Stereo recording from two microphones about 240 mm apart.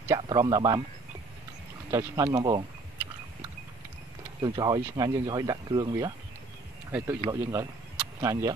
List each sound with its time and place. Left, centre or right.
0.1 s speech: centre
1.9 s speech: centre
4.4 s speech: centre